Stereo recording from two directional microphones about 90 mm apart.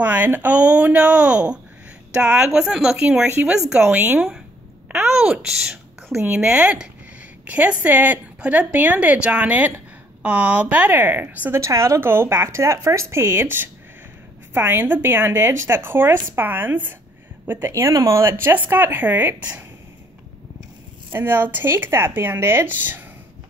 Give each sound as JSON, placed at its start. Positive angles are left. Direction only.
{"t": 0.0, "sound": "a woman's voice", "side_deg": -20}
{"t": 3.9, "sound": "a woman's voice", "side_deg": -20}
{"t": 5.1, "sound": "a woman's voice", "side_deg": -10}
{"t": 6.1, "sound": "a woman's voice", "side_deg": -20}
{"t": 11.6, "sound": "a woman's voice", "side_deg": -35}
{"t": 21.1, "sound": "a woman's voice", "side_deg": -20}